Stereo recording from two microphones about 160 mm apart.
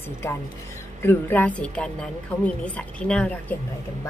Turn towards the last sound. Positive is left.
turn(degrees=10)  # may be behind; listen again after turning